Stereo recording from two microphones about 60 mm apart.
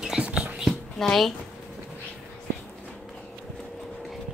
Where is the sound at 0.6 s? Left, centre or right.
Centre.